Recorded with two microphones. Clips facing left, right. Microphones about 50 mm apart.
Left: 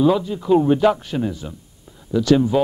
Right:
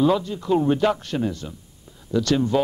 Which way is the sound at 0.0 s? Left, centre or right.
Centre.